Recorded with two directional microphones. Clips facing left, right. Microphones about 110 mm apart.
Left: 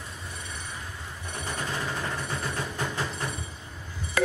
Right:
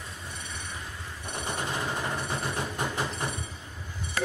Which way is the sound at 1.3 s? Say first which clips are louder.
Right 1 dB; 20° right (ahead or behind).